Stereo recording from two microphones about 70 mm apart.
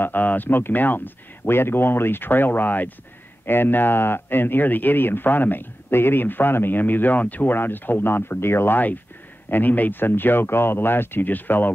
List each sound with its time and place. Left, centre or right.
0.0 s speech: left